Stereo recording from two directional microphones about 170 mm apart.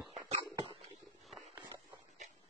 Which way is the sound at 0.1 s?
35° right (ahead or behind).